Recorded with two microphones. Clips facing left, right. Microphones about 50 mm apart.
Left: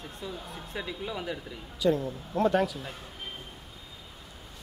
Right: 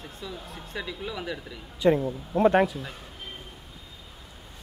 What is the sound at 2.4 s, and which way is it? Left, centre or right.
Speech, right.